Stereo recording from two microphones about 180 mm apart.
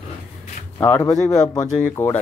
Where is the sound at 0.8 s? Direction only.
20° left (ahead or behind).